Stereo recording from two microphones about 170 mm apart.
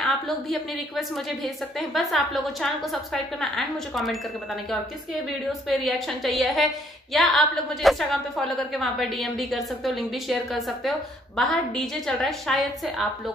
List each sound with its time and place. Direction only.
0.0 s a woman's voice: centre (ahead or behind)
5.5 s a woman's voice: centre (ahead or behind)